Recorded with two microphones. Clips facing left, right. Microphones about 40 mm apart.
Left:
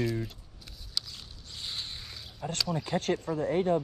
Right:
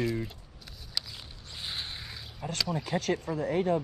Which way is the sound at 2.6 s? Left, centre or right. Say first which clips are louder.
Even; centre.